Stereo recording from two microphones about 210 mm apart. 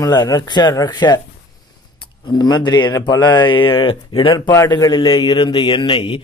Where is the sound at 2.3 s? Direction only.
20° left (ahead or behind).